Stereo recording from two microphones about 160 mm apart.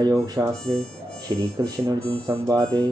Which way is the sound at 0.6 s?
5° left (ahead or behind).